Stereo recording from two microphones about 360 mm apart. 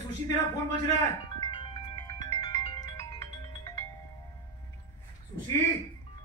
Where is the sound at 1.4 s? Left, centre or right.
Centre.